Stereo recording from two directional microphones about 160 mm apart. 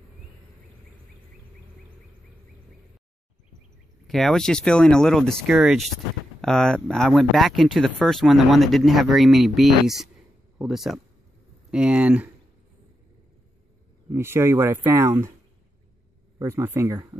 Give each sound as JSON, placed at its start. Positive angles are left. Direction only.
{"t": 4.1, "sound": "speech", "side_deg": 0}
{"t": 14.1, "sound": "speech", "side_deg": -15}
{"t": 16.3, "sound": "speech", "side_deg": -15}